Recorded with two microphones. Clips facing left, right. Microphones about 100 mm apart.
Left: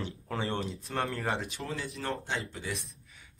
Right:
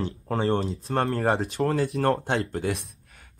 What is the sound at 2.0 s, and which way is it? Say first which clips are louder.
Speech: right 8 dB; 55° right (ahead or behind).